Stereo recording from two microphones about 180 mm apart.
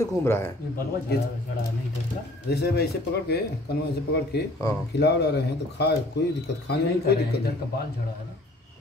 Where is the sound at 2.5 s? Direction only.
65° left (ahead or behind).